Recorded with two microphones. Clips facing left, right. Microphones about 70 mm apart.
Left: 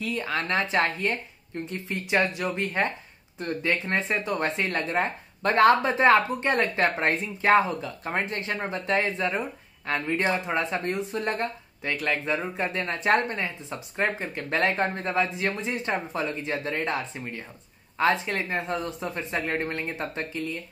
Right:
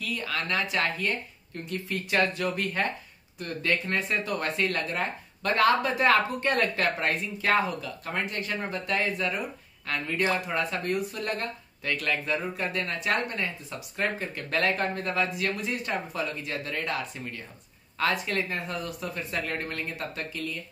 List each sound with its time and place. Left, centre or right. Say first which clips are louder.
0.0 s speech: left 3 dB; left